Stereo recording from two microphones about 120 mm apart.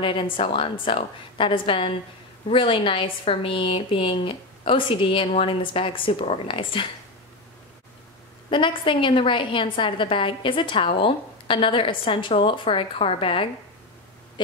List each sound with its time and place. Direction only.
0.0 s a woman's voice: 50° left (ahead or behind)
8.5 s a woman's voice: 45° left (ahead or behind)